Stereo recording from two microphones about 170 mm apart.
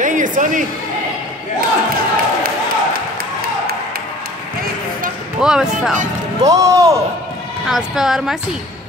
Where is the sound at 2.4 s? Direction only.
60° right (ahead or behind).